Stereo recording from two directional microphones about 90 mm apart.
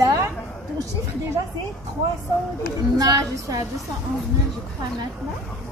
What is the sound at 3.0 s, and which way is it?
Speech, 40° right (ahead or behind).